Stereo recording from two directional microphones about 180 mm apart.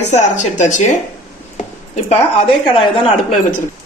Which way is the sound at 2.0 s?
30° left (ahead or behind).